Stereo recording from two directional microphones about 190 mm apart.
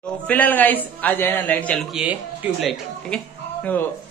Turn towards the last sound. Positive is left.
turn(degrees=5)  # may be behind; listen again after turning